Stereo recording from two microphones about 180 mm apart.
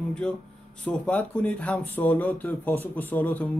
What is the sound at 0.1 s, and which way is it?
A man's voice, 5° left (ahead or behind).